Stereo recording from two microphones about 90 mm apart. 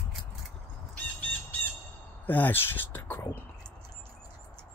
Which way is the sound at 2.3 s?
20° left (ahead or behind).